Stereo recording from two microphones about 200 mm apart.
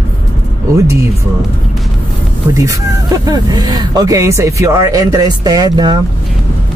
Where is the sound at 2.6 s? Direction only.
20° right (ahead or behind).